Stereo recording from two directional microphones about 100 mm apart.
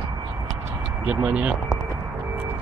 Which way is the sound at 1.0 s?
10° right (ahead or behind).